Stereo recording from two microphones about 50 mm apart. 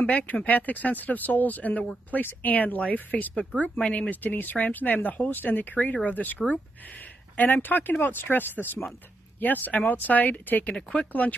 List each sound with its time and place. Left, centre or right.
0.0 s speech: left
10.7 s speech: left
11.1 s speech: left